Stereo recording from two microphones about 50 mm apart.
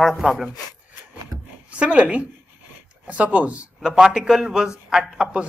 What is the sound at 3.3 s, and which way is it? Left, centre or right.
Speech, right.